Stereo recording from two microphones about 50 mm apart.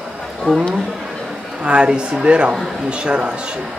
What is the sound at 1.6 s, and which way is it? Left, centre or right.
Speech, centre.